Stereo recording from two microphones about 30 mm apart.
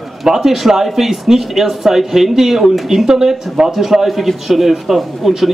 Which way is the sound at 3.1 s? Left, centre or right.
Centre.